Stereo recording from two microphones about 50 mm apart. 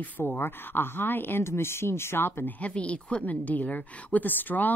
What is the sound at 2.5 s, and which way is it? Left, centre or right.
A woman's voice, left.